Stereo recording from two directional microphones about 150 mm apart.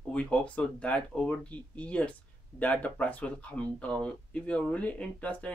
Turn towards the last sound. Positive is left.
turn(degrees=10)  # may be behind; listen again after turning